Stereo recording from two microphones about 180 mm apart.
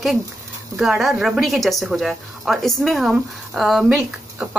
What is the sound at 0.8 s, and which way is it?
A woman's voice, centre (ahead or behind).